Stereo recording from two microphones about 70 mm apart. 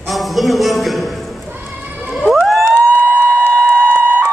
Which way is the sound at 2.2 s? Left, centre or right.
Centre.